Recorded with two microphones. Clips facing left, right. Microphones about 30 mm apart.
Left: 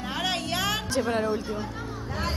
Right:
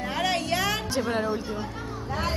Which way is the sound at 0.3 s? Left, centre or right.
Left.